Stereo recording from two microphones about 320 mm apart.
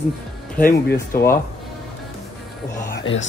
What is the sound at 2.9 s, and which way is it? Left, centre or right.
Music, left.